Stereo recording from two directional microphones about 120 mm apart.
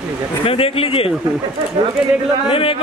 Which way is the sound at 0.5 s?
50° left (ahead or behind).